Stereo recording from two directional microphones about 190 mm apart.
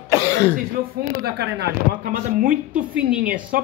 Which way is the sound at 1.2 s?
60° right (ahead or behind).